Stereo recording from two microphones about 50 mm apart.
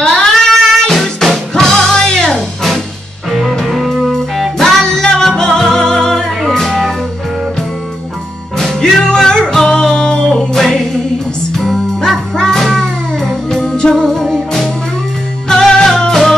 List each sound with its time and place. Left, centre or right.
0.0 s child singing: centre
0.9 s music: centre
3.3 s music: centre
4.1 s music: centre
8.5 s music: centre
12.4 s music: centre
15.4 s music: centre